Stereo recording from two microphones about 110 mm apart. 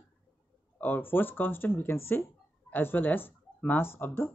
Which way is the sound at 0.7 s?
15° left (ahead or behind).